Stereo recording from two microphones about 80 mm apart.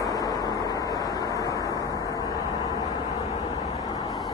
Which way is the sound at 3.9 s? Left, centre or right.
Left.